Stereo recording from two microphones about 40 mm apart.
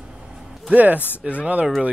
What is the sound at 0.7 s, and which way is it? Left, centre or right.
Speech, right.